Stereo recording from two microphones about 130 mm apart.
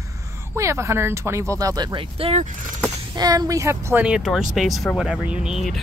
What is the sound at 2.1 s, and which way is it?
Speech, 45° right (ahead or behind).